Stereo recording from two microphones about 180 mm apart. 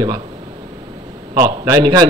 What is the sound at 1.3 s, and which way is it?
Speech, 25° right (ahead or behind).